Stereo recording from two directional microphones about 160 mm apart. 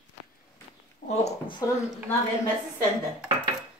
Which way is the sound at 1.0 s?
45° left (ahead or behind).